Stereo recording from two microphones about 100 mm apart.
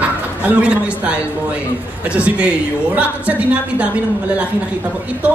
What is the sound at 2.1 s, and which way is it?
A man's voice, 10° right (ahead or behind).